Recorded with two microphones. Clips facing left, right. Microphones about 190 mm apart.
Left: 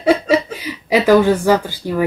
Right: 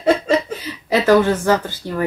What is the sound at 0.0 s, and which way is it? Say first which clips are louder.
Chuckle: left 2 dB; 10° left (ahead or behind).